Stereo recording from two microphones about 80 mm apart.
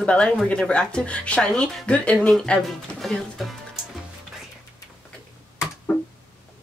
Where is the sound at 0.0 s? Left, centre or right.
Centre.